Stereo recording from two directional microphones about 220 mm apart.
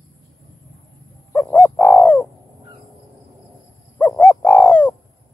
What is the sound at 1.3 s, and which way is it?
Bird, 10° left (ahead or behind).